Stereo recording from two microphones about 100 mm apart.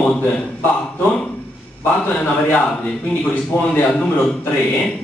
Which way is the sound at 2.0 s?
15° left (ahead or behind).